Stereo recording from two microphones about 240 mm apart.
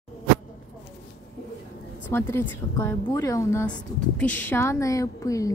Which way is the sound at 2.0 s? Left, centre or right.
Centre.